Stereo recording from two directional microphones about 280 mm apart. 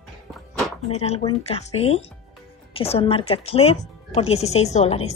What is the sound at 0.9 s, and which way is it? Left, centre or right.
Speech, left.